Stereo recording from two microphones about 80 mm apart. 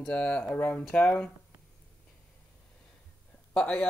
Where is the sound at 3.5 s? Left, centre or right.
Centre.